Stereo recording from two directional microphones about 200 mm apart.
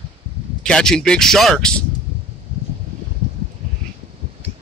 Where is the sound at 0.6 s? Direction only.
5° left (ahead or behind).